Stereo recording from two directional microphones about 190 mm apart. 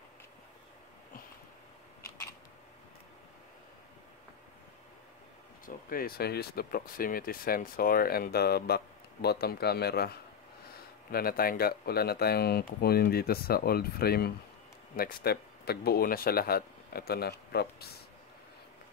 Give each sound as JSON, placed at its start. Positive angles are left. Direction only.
{"t": 5.7, "sound": "speech", "side_deg": 50}